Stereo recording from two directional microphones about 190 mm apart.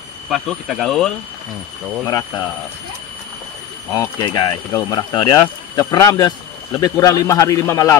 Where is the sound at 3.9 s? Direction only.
20° left (ahead or behind).